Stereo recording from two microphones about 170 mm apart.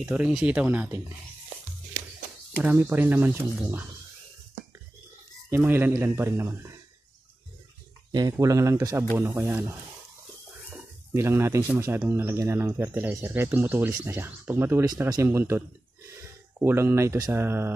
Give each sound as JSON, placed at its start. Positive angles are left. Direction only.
{"t": 0.0, "sound": "speech", "side_deg": -5}
{"t": 2.6, "sound": "speech", "side_deg": -10}
{"t": 5.5, "sound": "speech", "side_deg": -10}
{"t": 8.1, "sound": "speech", "side_deg": -25}
{"t": 11.1, "sound": "speech", "side_deg": -15}